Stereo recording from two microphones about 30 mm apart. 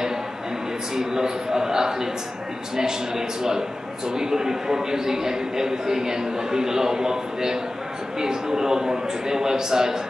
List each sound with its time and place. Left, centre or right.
0.9 s a man's voice: centre